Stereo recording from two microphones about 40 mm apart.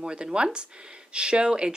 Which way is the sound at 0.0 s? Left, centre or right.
Right.